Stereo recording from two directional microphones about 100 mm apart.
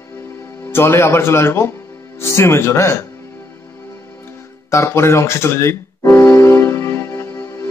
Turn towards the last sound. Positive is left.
turn(degrees=30)  # may be behind; listen again after turning